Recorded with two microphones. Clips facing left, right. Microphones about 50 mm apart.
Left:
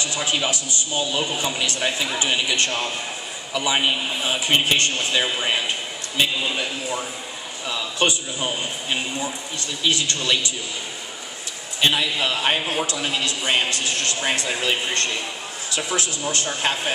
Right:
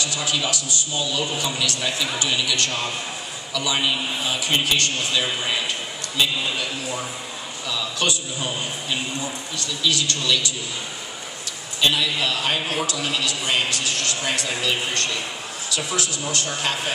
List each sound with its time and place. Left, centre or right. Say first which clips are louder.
0.0 s a man's voice: left 1 dB; left
11.8 s a man's voice: left 1 dB; left